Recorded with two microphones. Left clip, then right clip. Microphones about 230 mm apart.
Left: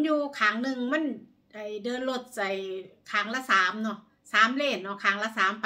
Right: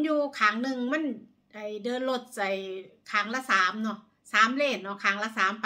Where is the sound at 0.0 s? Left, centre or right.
Centre.